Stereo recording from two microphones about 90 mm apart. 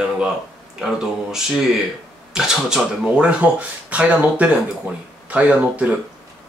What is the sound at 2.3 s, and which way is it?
Speech, 10° right (ahead or behind).